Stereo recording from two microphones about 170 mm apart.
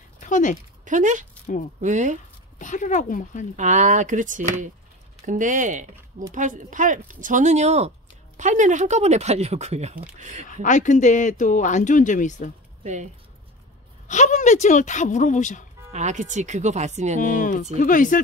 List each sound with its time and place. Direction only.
0.2 s a sound: 45° left (ahead or behind)
0.8 s speech: 45° right (ahead or behind)
2.6 s speech: 50° left (ahead or behind)
3.5 s speech: 45° right (ahead or behind)
10.4 s speech: 50° left (ahead or behind)
12.8 s speech: 45° right (ahead or behind)
14.0 s speech: 45° left (ahead or behind)
15.9 s speech: 45° right (ahead or behind)
17.2 s speech: 50° left (ahead or behind)